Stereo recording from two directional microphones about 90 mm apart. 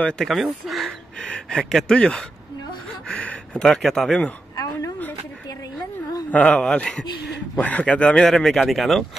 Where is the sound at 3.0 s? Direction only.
10° left (ahead or behind).